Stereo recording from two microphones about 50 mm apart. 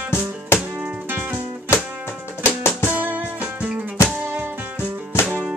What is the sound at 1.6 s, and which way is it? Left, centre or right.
Music, left.